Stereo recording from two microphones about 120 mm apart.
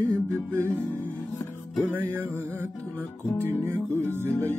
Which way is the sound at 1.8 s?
15° right (ahead or behind).